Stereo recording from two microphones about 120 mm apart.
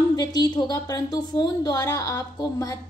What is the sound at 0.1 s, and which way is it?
A woman's voice, 35° left (ahead or behind).